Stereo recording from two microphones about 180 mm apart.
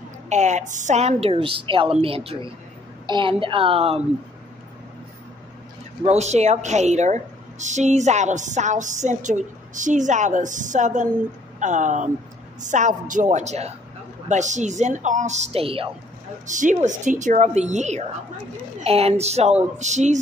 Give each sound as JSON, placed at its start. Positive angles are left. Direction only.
{"t": 0.3, "sound": "a woman's voice", "side_deg": -40}
{"t": 6.0, "sound": "a woman's voice", "side_deg": -40}
{"t": 16.4, "sound": "a woman's voice", "side_deg": -45}